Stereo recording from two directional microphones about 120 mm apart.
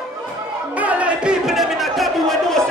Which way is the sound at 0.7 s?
10° right (ahead or behind).